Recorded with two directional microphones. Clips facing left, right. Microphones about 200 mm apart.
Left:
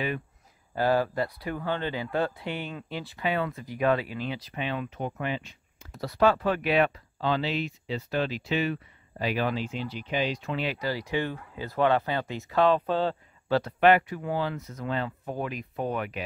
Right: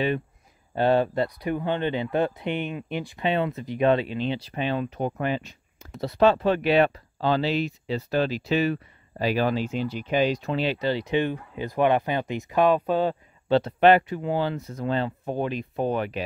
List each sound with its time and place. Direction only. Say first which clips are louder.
0.7 s speech: right 4 dB; 25° right (ahead or behind); by 5.9 s 40° right (ahead or behind)
5.9 s speech: right 3 dB; 25° right (ahead or behind)